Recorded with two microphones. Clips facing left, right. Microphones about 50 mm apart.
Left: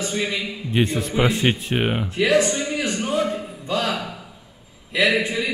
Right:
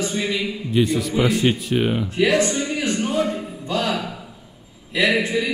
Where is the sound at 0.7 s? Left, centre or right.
Left.